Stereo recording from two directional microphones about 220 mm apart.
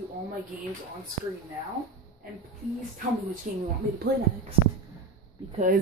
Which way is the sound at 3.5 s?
35° right (ahead or behind).